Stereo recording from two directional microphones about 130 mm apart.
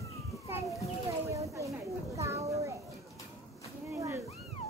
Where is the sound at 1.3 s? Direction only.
25° right (ahead or behind).